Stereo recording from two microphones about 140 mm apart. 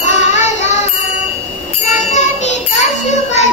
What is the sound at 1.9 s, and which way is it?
Music, 55° left (ahead or behind).